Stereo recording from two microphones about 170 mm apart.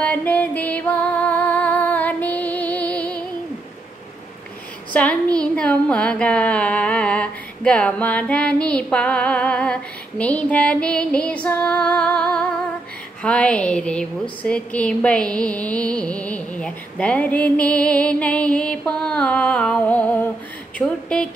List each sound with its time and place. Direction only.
0.0 s music: 10° left (ahead or behind)
4.9 s a woman's voice: 5° left (ahead or behind)